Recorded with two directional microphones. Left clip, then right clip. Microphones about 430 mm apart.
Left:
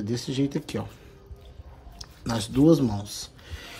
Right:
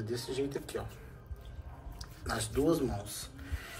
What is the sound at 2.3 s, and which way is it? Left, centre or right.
Speech, centre.